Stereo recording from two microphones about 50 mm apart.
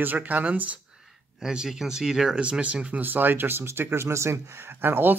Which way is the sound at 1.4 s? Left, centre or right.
Centre.